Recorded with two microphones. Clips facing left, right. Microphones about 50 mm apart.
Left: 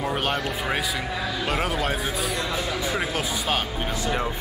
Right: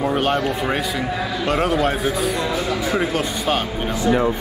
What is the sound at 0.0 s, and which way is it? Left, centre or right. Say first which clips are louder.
Speech: right 6 dB; centre.